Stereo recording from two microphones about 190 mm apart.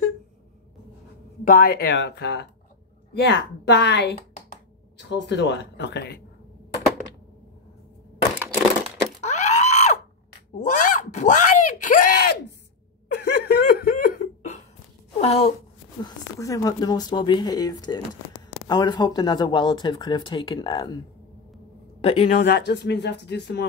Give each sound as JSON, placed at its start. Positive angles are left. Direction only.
{"t": 1.4, "sound": "speech", "side_deg": 50}
{"t": 9.2, "sound": "screaming", "side_deg": 35}
{"t": 10.5, "sound": "a sound", "side_deg": 40}
{"t": 13.1, "sound": "laughter", "side_deg": 55}
{"t": 15.1, "sound": "a woman's voice", "side_deg": 35}
{"t": 16.0, "sound": "speech", "side_deg": 15}
{"t": 22.0, "sound": "a man's voice", "side_deg": 35}
{"t": 22.5, "sound": "speech", "side_deg": 60}